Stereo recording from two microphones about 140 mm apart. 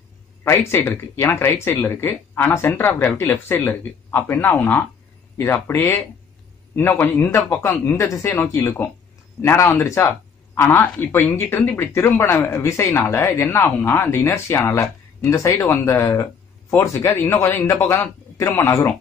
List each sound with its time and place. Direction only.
0.4 s speech: 15° left (ahead or behind)